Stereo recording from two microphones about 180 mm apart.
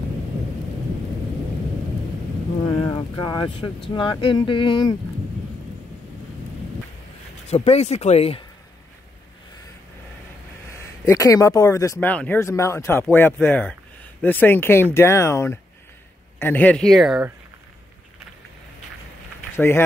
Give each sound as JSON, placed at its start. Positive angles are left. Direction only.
{"t": 2.6, "sound": "a sound", "side_deg": 20}
{"t": 3.5, "sound": "speech", "side_deg": 30}
{"t": 7.4, "sound": "speech", "side_deg": 35}
{"t": 10.7, "sound": "speech", "side_deg": 15}
{"t": 19.5, "sound": "speech", "side_deg": 10}